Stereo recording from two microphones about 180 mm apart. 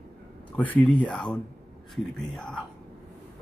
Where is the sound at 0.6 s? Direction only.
10° left (ahead or behind).